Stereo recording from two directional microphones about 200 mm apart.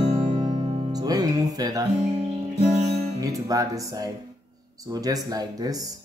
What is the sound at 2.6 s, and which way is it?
Music, 35° right (ahead or behind).